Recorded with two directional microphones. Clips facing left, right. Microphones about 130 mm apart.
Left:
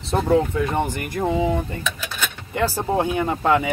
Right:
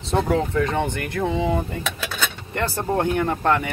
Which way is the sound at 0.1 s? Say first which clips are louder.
Left 2 dB; centre (ahead or behind).